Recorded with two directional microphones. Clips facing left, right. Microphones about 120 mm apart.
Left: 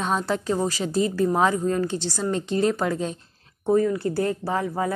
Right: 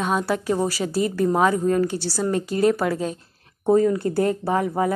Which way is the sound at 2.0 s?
20° left (ahead or behind).